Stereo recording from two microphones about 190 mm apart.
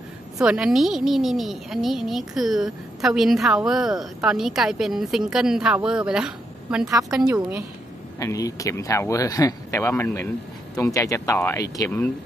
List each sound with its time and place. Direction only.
0.4 s a woman's voice: 5° right (ahead or behind)
8.2 s speech: 15° left (ahead or behind)